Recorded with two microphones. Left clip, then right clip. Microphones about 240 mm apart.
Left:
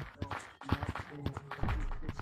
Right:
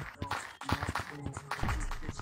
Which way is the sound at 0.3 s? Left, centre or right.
Right.